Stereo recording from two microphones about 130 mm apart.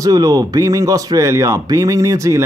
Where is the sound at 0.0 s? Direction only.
30° right (ahead or behind).